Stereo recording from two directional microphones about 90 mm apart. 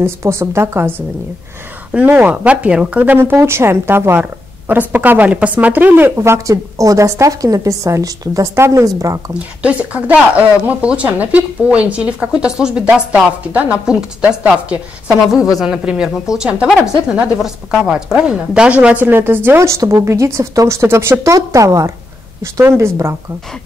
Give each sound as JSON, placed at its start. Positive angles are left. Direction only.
{"t": 0.0, "sound": "speech", "side_deg": -30}
{"t": 3.2, "sound": "speech", "side_deg": -30}
{"t": 6.1, "sound": "speech", "side_deg": -30}
{"t": 9.6, "sound": "speech", "side_deg": -15}
{"t": 15.3, "sound": "a woman's voice", "side_deg": 40}
{"t": 15.6, "sound": "speech", "side_deg": -10}
{"t": 19.0, "sound": "speech", "side_deg": -25}